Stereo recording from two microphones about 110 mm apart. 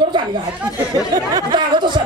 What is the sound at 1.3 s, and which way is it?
Speech, 45° right (ahead or behind).